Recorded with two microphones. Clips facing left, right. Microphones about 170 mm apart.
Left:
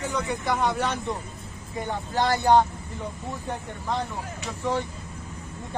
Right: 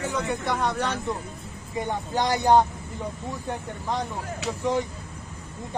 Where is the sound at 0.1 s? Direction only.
Centre (ahead or behind).